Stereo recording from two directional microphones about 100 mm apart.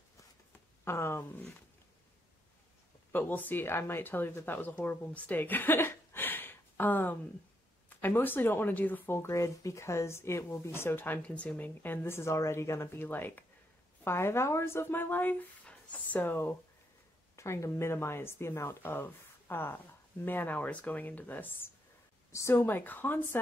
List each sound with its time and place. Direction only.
0.8 s speech: 25° left (ahead or behind)
3.1 s speech: 20° left (ahead or behind)